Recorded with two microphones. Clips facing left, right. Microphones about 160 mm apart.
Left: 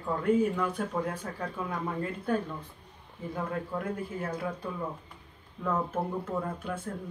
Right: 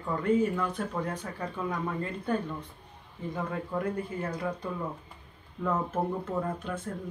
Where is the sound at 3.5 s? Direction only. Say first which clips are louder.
Right 2 dB; centre (ahead or behind).